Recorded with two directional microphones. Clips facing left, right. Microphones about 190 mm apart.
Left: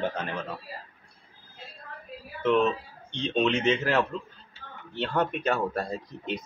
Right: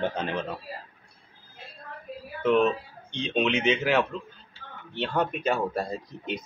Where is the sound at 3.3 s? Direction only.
10° right (ahead or behind).